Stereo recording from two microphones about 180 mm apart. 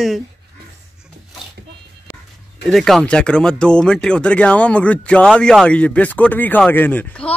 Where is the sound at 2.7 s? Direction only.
Centre (ahead or behind).